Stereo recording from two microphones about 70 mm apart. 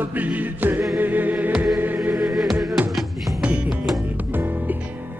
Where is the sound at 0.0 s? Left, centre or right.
Right.